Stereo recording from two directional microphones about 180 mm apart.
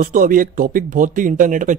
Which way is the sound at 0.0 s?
50° right (ahead or behind).